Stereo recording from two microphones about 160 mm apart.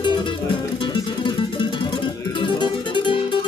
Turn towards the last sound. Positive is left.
turn(degrees=30)  # may be behind; listen again after turning